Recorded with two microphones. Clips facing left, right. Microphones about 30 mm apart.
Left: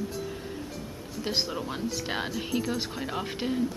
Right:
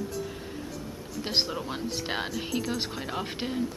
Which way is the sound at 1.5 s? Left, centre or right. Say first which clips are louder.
Even; centre.